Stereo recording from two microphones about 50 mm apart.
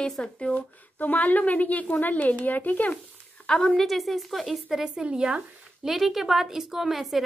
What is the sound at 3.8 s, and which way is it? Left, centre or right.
Speech, centre.